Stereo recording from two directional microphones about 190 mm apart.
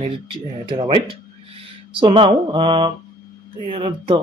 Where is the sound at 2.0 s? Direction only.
25° right (ahead or behind).